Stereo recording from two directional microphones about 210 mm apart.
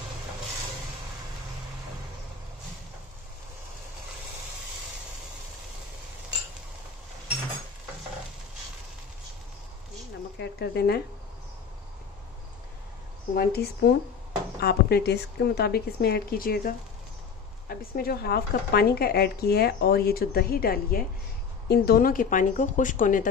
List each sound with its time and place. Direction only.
10.4 s speech: 50° left (ahead or behind)
13.3 s speech: 45° left (ahead or behind)